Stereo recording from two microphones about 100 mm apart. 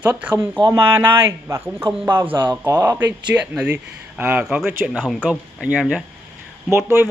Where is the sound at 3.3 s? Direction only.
15° right (ahead or behind).